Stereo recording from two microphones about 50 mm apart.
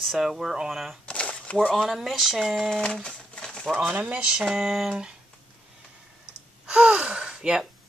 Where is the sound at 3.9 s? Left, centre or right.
Right.